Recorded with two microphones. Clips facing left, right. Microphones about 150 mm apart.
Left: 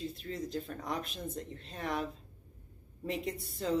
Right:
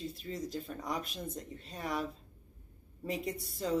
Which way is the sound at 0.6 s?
45° left (ahead or behind).